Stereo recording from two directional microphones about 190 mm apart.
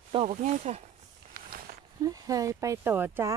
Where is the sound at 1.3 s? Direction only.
50° right (ahead or behind).